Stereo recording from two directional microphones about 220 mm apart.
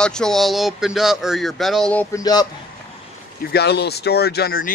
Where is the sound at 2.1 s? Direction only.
15° left (ahead or behind).